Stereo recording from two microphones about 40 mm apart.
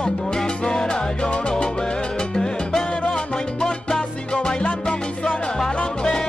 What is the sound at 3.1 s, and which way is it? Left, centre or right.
Salsa music, centre.